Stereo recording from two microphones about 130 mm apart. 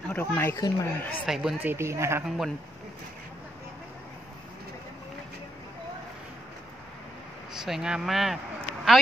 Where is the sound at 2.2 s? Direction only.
Centre (ahead or behind).